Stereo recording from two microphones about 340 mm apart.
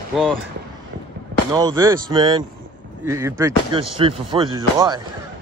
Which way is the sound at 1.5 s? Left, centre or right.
Centre.